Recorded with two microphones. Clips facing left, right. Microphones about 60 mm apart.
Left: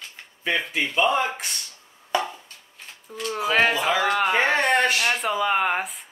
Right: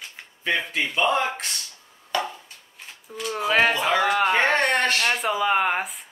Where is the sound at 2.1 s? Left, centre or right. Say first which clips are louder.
Left 2 dB; centre.